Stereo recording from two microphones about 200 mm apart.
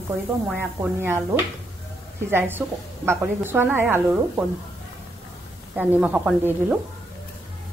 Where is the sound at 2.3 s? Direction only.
10° right (ahead or behind).